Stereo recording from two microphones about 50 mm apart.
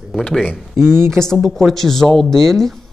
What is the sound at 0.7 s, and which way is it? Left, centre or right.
Speech, right.